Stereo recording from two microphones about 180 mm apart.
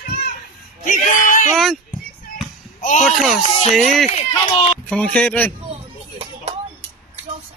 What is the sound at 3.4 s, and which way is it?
Speech, 35° left (ahead or behind).